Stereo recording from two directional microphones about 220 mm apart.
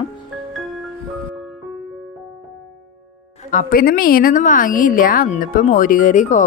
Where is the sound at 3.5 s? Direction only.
40° left (ahead or behind).